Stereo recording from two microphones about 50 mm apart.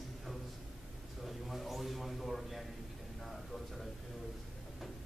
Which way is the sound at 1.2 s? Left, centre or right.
Centre.